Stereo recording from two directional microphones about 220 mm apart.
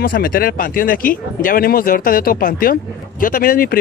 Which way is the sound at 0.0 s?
40° left (ahead or behind).